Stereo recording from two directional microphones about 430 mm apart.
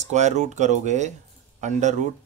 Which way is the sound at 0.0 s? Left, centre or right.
Centre.